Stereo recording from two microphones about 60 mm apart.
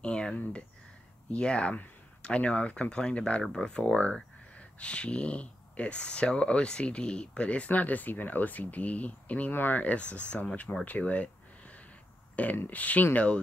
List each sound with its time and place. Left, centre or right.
0.0 s a sound: centre
0.4 s speech: left
12.5 s speech: left